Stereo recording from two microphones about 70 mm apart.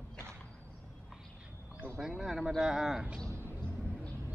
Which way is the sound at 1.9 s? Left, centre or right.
Centre.